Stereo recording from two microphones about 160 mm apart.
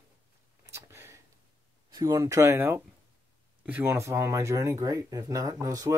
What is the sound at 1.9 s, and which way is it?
Speech, 25° right (ahead or behind).